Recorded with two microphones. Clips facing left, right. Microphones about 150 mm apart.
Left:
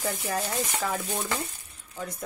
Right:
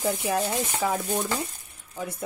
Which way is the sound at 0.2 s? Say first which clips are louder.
Right 4 dB; 10° right (ahead or behind).